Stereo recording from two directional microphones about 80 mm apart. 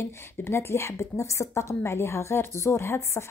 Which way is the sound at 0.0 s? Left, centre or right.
Left.